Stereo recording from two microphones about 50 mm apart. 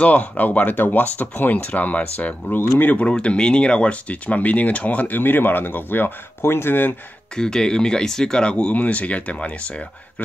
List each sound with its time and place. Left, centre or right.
0.0 s speech: left
3.0 s speech: left
7.3 s speech: centre